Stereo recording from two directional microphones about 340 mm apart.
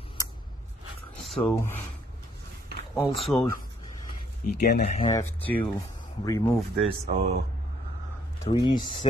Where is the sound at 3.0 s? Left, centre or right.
Centre.